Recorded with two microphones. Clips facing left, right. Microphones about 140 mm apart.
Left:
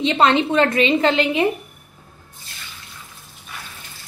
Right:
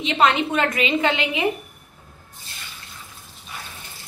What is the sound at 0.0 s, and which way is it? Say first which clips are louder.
A woman's voice: left 3 dB; 30° left (ahead or behind).